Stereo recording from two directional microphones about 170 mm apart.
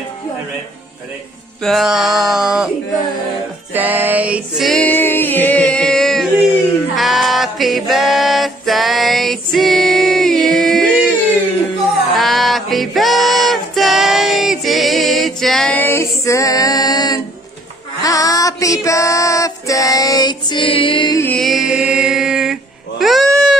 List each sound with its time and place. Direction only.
1.6 s a sound: centre (ahead or behind)
3.7 s music: 10° right (ahead or behind)
12.2 s music: centre (ahead or behind); by 21.2 s 30° left (ahead or behind)
21.2 s music: 5° left (ahead or behind)